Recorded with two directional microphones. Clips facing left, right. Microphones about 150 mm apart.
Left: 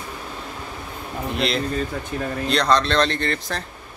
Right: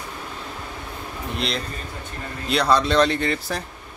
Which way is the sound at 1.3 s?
Centre (ahead or behind).